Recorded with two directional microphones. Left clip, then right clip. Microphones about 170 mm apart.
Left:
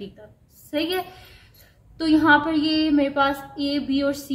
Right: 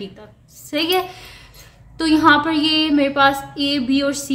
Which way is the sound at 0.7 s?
20° right (ahead or behind).